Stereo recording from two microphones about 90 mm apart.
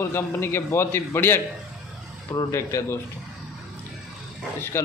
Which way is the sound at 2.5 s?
35° left (ahead or behind).